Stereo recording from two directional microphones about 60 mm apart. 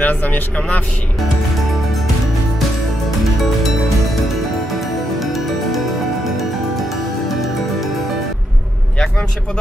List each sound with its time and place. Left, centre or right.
0.0 s speech: left
4.7 s music: centre
7.2 s music: centre